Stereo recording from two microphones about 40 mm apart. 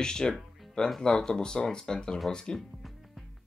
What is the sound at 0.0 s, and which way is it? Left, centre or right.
Speech, centre.